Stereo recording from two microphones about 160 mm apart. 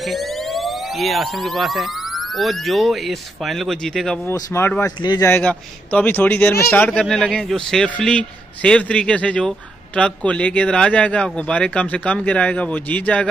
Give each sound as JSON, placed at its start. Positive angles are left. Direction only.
{"t": 0.1, "sound": "speech", "side_deg": 0}